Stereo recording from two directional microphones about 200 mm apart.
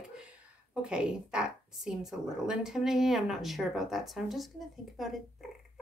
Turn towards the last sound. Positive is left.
turn(degrees=0)  # may be behind; listen again after turning